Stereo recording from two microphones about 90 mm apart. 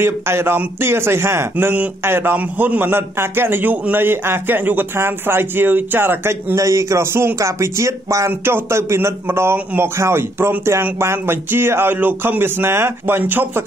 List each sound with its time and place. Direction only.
0.0 s a man's voice: 25° right (ahead or behind)